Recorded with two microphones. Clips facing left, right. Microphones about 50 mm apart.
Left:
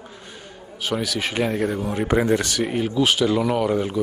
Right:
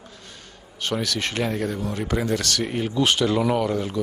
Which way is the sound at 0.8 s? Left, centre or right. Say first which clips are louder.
Left 1 dB; centre.